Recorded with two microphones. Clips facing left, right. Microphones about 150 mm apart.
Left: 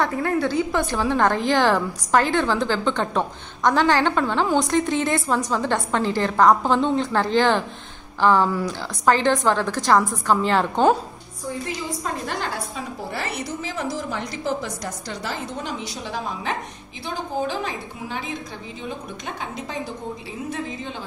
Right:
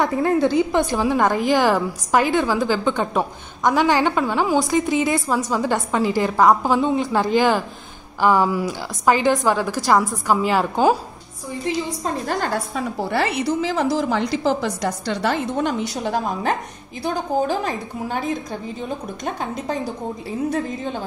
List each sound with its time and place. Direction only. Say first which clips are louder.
0.0 s a woman's voice: right 4 dB; 20° right (ahead or behind)
12.0 s a woman's voice: right 4 dB; 45° right (ahead or behind)
12.7 s a woman's voice: right 8 dB; 70° right (ahead or behind); by 18.3 s 45° right (ahead or behind)